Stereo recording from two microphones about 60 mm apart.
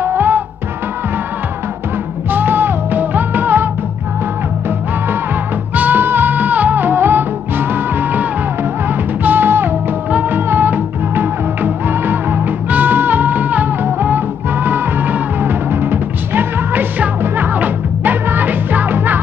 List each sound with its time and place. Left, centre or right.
0.0 s music: right
2.3 s music: right
5.8 s music: right